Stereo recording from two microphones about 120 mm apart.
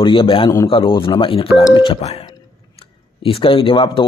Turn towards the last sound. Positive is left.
turn(degrees=45)  # may be behind; listen again after turning